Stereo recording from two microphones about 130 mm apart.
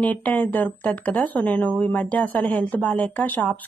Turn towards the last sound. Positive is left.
turn(degrees=10)  # may be behind; listen again after turning